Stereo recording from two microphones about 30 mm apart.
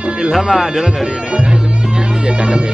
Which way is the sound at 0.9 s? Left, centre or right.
Right.